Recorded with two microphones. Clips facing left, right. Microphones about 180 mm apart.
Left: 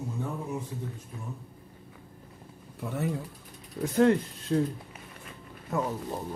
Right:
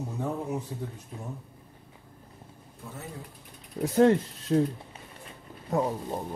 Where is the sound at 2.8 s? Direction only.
70° left (ahead or behind).